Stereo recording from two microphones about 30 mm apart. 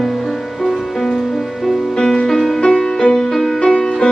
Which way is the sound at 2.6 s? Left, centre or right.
Left.